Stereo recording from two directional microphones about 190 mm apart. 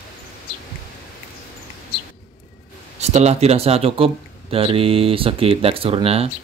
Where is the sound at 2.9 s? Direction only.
35° right (ahead or behind).